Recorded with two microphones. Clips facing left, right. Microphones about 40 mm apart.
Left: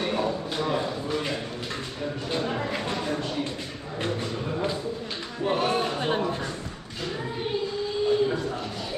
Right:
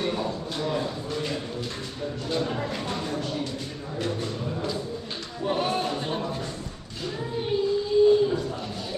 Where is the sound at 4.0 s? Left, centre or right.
Left.